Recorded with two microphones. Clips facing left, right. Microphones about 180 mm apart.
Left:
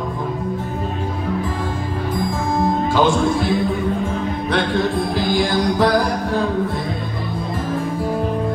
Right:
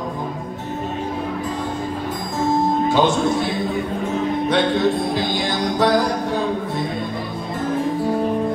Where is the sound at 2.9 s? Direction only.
20° right (ahead or behind).